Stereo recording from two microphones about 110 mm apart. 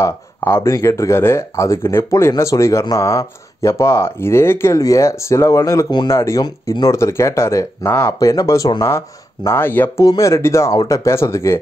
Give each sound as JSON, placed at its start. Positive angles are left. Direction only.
{"t": 0.0, "sound": "speech", "side_deg": 25}
{"t": 5.9, "sound": "speech", "side_deg": 40}
{"t": 6.1, "sound": "speech", "side_deg": 25}
{"t": 6.7, "sound": "speech", "side_deg": 35}
{"t": 7.0, "sound": "speech", "side_deg": 25}
{"t": 10.0, "sound": "speech", "side_deg": 30}